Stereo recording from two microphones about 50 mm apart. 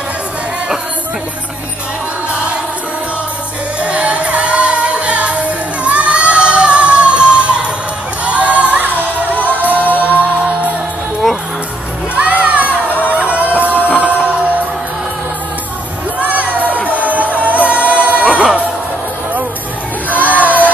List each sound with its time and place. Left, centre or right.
3.8 s music: right
5.9 s crowd: right
8.3 s music: right
9.8 s music: left
12.2 s music: right
16.2 s music: right
20.1 s music: right